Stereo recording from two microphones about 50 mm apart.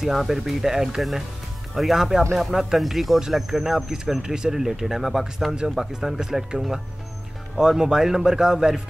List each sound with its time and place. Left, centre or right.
0.0 s speech: centre